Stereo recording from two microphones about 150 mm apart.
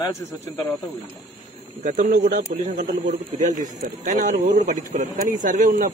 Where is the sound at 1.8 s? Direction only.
55° right (ahead or behind); by 3.1 s 75° right (ahead or behind).